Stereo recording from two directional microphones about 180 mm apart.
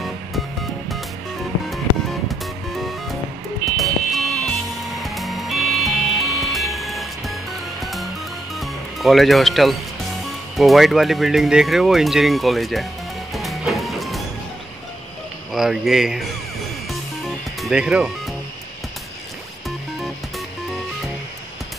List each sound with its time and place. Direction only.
2.2 s music: centre (ahead or behind)
10.5 s speech: centre (ahead or behind)
13.3 s music: centre (ahead or behind)
15.5 s speech: centre (ahead or behind)
17.6 s speech: 5° right (ahead or behind)